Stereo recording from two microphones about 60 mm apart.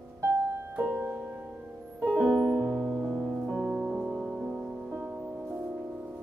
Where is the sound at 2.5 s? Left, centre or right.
Right.